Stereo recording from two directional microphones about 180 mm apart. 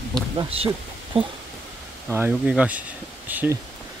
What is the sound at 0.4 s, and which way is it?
Speech, 35° right (ahead or behind).